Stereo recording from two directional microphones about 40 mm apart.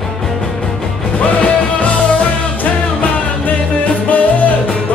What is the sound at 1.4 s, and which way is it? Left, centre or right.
Music, left.